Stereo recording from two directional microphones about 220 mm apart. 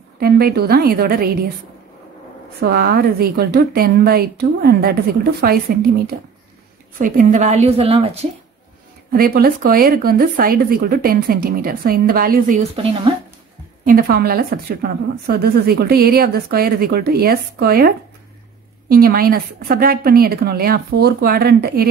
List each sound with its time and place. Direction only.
0.2 s a woman's voice: 45° right (ahead or behind)
2.6 s a woman's voice: 45° right (ahead or behind); by 8.3 s 25° right (ahead or behind)
9.1 s a woman's voice: 45° right (ahead or behind)
13.8 s a woman's voice: 40° right (ahead or behind)